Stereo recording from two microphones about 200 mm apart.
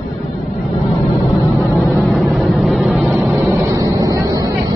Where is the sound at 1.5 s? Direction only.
15° left (ahead or behind).